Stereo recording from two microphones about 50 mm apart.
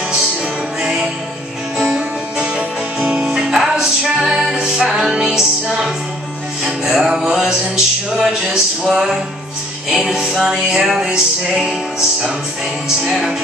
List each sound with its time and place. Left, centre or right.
0.8 s music: centre
3.3 s music: centre
11.1 s music: centre
12.8 s music: centre